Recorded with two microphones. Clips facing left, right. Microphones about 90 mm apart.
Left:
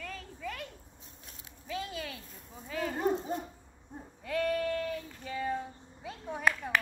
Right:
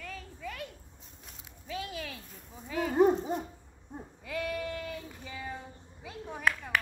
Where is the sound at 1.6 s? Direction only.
5° right (ahead or behind).